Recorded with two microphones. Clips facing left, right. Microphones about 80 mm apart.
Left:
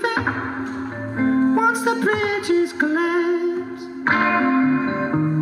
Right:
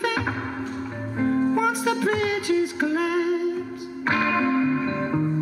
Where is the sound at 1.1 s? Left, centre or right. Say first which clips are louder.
Left 4 dB; left.